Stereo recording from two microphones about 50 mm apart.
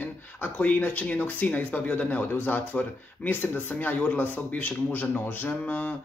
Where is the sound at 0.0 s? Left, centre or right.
Left.